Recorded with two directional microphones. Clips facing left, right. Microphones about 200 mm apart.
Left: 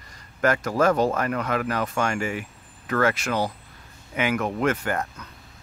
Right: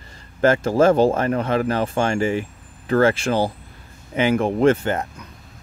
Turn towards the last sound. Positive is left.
turn(degrees=-25)  # may be behind; listen again after turning